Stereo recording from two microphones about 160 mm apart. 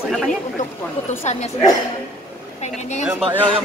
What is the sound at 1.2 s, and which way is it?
Speech, 45° left (ahead or behind).